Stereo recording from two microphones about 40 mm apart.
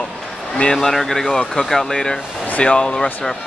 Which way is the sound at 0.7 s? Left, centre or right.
Centre.